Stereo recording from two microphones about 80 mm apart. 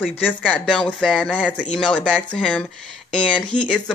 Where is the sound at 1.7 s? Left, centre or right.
Centre.